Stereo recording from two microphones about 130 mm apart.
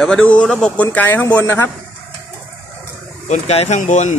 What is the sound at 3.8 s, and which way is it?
Speech, 70° left (ahead or behind).